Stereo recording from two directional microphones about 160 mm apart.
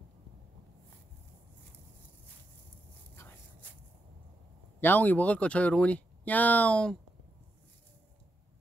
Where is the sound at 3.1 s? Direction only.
15° left (ahead or behind).